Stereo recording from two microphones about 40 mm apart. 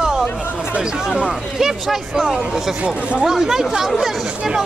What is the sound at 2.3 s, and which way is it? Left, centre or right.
Speech, centre.